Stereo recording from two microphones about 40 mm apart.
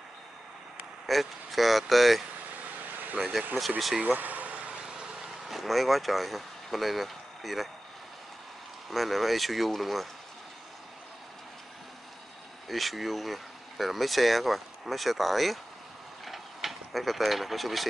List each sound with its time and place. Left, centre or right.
1.0 s speech: centre
2.5 s vehicle: right
4.8 s vehicle: centre
5.5 s speech: centre
8.9 s speech: centre
12.6 s speech: centre
16.3 s a sound: centre